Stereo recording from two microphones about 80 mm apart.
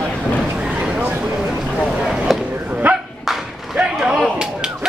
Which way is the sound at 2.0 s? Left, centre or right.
Centre.